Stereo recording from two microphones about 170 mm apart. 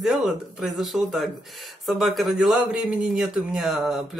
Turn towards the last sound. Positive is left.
turn(degrees=0)  # may be behind; listen again after turning